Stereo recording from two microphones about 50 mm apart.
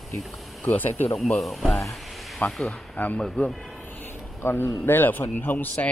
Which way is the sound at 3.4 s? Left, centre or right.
Left.